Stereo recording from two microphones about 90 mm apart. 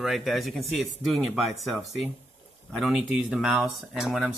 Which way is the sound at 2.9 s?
15° right (ahead or behind).